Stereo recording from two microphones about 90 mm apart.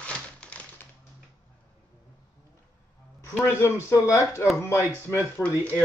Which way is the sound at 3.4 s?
30° left (ahead or behind).